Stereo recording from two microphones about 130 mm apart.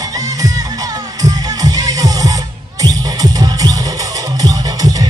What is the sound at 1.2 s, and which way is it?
Music, 30° right (ahead or behind).